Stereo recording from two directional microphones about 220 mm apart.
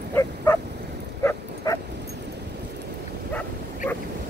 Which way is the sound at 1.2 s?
15° left (ahead or behind).